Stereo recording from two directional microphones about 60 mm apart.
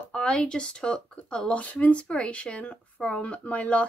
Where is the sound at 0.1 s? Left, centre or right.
Centre.